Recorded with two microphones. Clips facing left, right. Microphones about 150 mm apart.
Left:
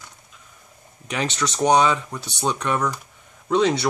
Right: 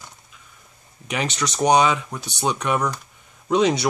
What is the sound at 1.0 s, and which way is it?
Speech, 10° right (ahead or behind).